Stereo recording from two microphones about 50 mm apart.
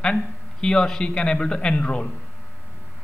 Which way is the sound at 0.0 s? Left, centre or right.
Centre.